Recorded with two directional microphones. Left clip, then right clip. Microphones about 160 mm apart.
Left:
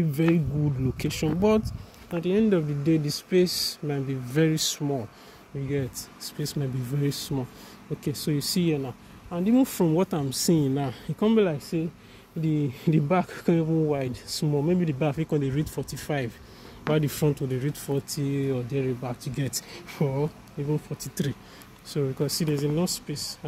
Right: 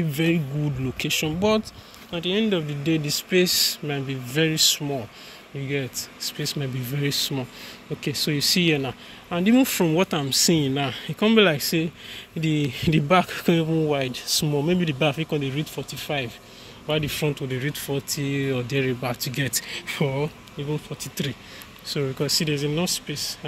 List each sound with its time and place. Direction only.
0.1 s speech: 20° left (ahead or behind)
2.1 s speech: 40° left (ahead or behind)
5.7 s speech: 20° left (ahead or behind)
8.8 s speech: 5° right (ahead or behind)
9.6 s speech: 15° left (ahead or behind)
11.3 s speech: centre (ahead or behind)
12.4 s speech: 10° left (ahead or behind)
15.1 s speech: 20° left (ahead or behind)
16.9 s speech: 45° left (ahead or behind)
17.5 s speech: 20° left (ahead or behind)
20.6 s speech: 30° left (ahead or behind)
22.0 s speech: 15° left (ahead or behind)